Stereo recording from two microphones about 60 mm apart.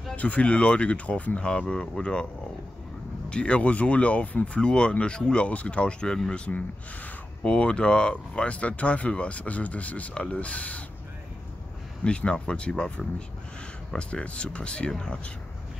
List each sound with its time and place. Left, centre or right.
0.1 s speech: left
3.3 s speech: centre
12.0 s speech: centre